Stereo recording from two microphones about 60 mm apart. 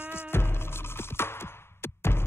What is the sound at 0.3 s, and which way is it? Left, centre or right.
Music, left.